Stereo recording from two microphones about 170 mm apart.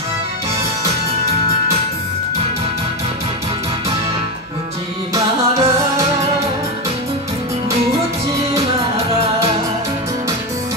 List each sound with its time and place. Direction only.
5.1 s music: 20° right (ahead or behind)